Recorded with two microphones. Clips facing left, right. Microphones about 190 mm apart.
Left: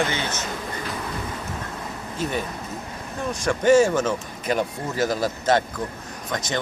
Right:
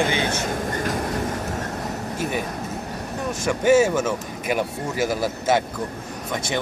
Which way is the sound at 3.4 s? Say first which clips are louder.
Even; 5° right (ahead or behind).